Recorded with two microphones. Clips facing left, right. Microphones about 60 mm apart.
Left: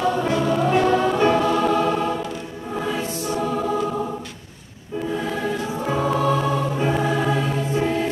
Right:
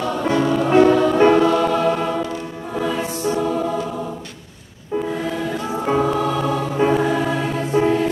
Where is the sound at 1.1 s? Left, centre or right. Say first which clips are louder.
Right 4 dB; right.